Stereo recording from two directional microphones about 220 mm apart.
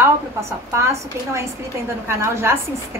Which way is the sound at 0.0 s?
10° right (ahead or behind).